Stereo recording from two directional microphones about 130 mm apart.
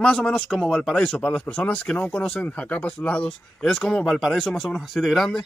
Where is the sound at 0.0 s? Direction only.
5° left (ahead or behind).